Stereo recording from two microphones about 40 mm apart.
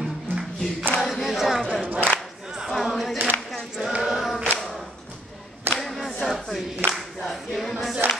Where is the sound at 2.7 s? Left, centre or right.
Centre.